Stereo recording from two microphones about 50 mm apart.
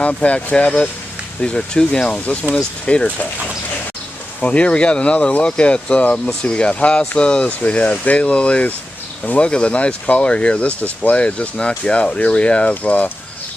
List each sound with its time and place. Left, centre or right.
0.0 s speech: left
4.4 s speech: left